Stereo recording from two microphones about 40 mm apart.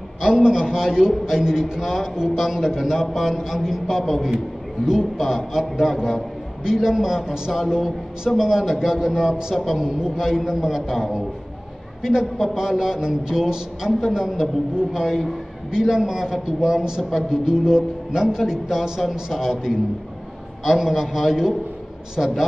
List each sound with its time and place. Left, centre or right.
0.2 s a man's voice: centre
9.6 s a man's voice: centre
9.8 s a man's voice: centre
10.1 s a man's voice: centre
20.6 s a man's voice: centre